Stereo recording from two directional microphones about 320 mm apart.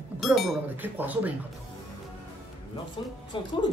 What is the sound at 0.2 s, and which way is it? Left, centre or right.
Speech, centre.